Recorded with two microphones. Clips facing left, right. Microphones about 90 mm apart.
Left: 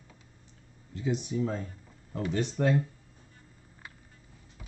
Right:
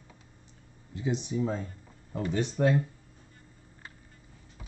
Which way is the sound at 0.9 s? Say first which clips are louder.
Even; 20° right (ahead or behind).